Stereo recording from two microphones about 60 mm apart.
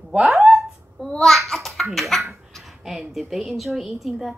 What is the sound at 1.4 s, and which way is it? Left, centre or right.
Speech, centre.